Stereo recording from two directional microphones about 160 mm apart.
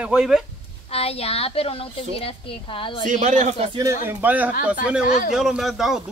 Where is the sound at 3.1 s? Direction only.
50° right (ahead or behind).